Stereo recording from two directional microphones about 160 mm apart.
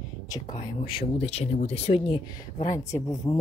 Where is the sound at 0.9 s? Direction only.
35° left (ahead or behind).